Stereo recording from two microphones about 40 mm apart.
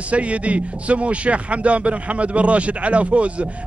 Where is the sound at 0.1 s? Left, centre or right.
Right.